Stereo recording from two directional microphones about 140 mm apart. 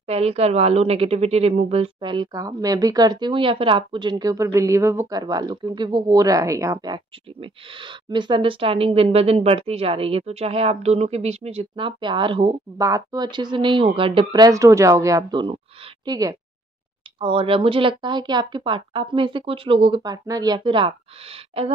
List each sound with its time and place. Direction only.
0.0 s speech: 45° right (ahead or behind)
2.3 s speech: 25° right (ahead or behind)
12.7 s speech: 25° right (ahead or behind)
17.2 s speech: 40° right (ahead or behind)
20.0 s speech: 25° right (ahead or behind); by 21.7 s 45° right (ahead or behind)